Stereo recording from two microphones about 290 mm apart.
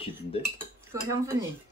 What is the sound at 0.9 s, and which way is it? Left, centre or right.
Cutlery, centre.